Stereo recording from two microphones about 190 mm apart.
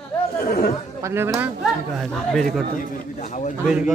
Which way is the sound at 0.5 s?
50° left (ahead or behind).